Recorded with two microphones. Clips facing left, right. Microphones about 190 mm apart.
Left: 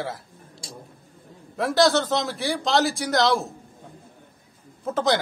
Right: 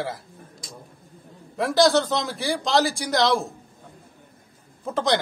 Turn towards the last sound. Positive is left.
turn(degrees=5)  # may be behind; listen again after turning